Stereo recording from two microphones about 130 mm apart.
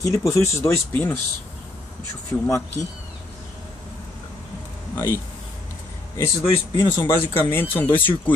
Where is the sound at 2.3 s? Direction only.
25° left (ahead or behind).